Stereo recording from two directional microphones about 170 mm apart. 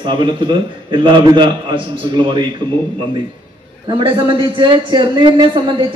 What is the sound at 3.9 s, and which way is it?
A man's voice, 30° right (ahead or behind).